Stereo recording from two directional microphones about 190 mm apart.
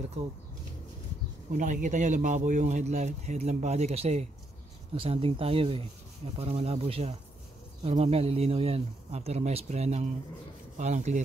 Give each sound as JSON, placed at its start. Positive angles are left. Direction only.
{"t": 1.5, "sound": "a man's voice", "side_deg": -40}